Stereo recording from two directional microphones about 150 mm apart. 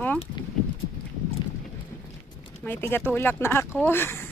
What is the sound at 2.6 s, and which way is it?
Speech, 15° left (ahead or behind).